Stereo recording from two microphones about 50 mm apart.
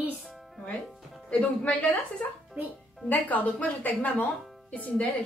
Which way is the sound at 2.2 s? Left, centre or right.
Left.